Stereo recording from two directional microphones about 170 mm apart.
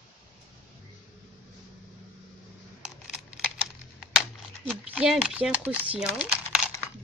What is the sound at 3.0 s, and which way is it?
Typing, 5° right (ahead or behind).